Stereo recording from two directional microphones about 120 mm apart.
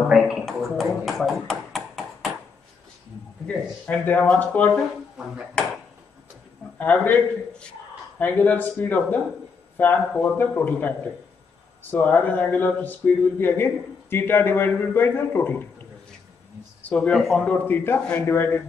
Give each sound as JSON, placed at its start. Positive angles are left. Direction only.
{"t": 0.1, "sound": "a sound", "side_deg": 0}
{"t": 3.4, "sound": "speech", "side_deg": 10}
{"t": 4.7, "sound": "speech", "side_deg": -5}
{"t": 6.8, "sound": "speech", "side_deg": 15}
{"t": 16.8, "sound": "speech", "side_deg": 10}
{"t": 17.6, "sound": "speech", "side_deg": 15}